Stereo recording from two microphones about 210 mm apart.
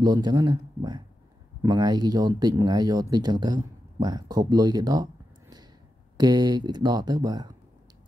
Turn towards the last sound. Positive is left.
turn(degrees=-20)  # may be behind; listen again after turning